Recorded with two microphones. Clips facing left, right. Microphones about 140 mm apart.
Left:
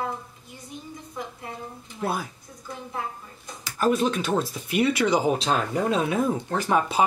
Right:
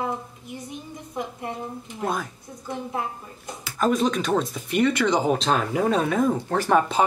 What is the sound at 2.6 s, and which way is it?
Speech, 25° right (ahead or behind).